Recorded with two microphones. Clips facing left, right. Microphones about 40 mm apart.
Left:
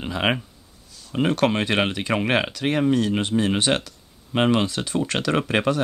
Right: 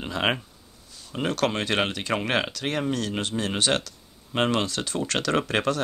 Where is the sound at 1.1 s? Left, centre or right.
Centre.